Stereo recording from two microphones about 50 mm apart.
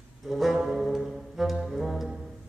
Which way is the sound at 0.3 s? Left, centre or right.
Centre.